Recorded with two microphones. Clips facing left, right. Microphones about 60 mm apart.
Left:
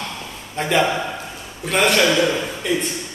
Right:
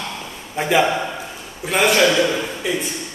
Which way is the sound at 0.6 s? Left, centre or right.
Centre.